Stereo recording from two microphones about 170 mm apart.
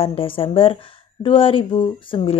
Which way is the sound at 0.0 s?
35° left (ahead or behind).